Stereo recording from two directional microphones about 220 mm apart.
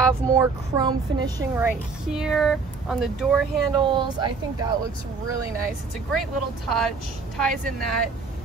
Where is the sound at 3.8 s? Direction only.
20° right (ahead or behind).